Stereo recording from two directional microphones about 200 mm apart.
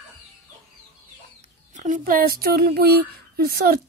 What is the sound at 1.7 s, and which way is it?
Speech, 40° right (ahead or behind).